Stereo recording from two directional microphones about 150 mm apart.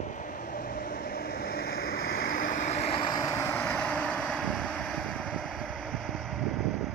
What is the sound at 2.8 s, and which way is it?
Vehicle, 35° left (ahead or behind).